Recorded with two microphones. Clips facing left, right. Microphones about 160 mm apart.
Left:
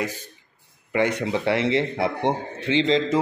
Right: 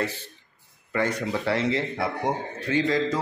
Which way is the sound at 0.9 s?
20° left (ahead or behind).